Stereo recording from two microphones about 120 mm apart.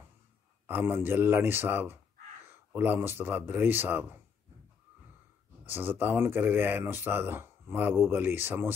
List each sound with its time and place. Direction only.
0.7 s speech: 15° right (ahead or behind)
5.7 s speech: 15° right (ahead or behind)